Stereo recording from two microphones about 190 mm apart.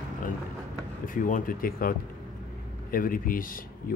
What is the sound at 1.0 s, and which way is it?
Speech, 45° left (ahead or behind).